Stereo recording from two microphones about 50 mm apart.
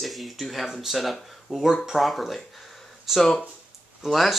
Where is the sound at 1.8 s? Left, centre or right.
Centre.